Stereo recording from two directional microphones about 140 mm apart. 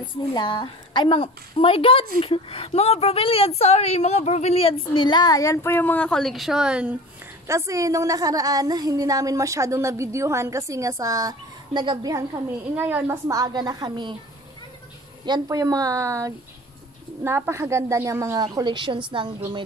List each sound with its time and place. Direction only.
0.3 s a woman's voice: 35° left (ahead or behind); by 7.0 s 5° right (ahead or behind)
7.4 s a woman's voice: 20° right (ahead or behind)
12.7 s a woman's voice: 10° right (ahead or behind)
13.3 s a woman's voice: 25° right (ahead or behind)
15.2 s a woman's voice: 25° right (ahead or behind)